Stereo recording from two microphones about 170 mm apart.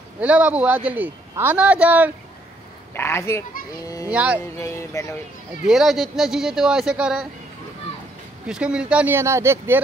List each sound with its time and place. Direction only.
0.2 s a man's voice: 10° right (ahead or behind)
2.9 s speech: 15° left (ahead or behind)
4.1 s a man's voice: 5° right (ahead or behind)
4.6 s speech: 15° left (ahead or behind)
5.7 s speech: centre (ahead or behind)
8.5 s a man's voice: 5° right (ahead or behind)